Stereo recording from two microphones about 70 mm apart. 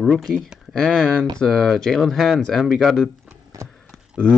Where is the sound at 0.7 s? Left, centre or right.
Centre.